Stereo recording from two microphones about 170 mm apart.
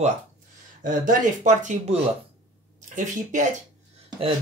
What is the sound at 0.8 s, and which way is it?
Speech, 50° right (ahead or behind).